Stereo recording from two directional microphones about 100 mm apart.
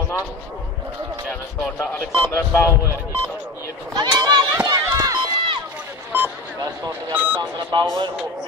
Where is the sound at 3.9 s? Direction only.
45° right (ahead or behind).